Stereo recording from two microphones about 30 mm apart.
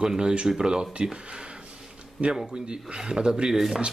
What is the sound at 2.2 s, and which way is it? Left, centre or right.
Speech, centre.